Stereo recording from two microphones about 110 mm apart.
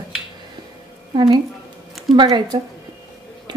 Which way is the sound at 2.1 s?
Centre (ahead or behind).